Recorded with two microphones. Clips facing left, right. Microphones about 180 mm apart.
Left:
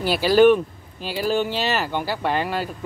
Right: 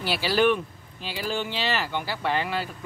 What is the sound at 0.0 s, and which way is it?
Speech, 45° left (ahead or behind).